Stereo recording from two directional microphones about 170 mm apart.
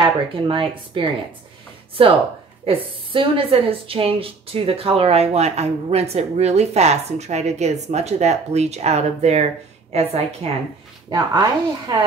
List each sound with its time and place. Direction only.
0.0 s speech: 30° right (ahead or behind)
11.1 s speech: 25° right (ahead or behind)